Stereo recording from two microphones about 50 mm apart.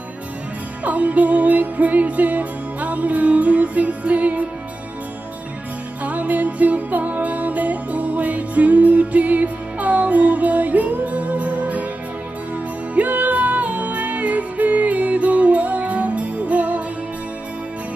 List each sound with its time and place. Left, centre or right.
0.8 s music: right
6.0 s music: right
12.9 s music: right